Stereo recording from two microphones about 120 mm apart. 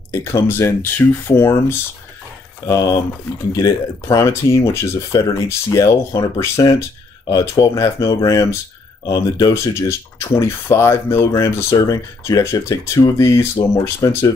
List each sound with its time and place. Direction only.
0.1 s speech: 20° left (ahead or behind)